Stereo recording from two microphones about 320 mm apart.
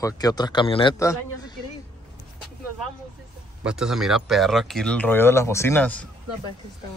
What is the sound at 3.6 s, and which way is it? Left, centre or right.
Speech, centre.